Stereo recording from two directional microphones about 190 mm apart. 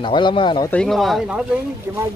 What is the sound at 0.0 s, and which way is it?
Speech, 25° left (ahead or behind).